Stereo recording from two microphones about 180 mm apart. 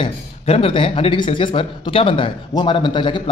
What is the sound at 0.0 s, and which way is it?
Speech, 30° left (ahead or behind).